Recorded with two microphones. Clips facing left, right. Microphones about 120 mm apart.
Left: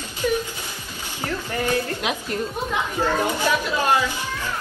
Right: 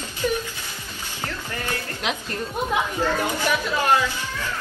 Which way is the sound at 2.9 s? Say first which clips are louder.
Left 2 dB; 15° left (ahead or behind).